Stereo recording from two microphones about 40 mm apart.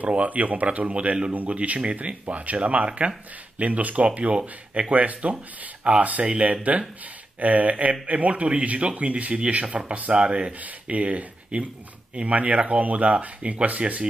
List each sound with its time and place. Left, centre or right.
0.0 s speech: right
10.6 s speech: right